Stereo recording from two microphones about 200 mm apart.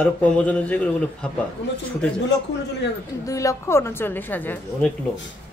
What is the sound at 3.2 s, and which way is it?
A woman's voice, 15° left (ahead or behind).